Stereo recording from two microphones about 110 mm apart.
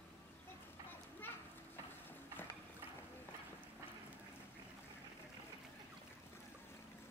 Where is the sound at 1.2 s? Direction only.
20° left (ahead or behind).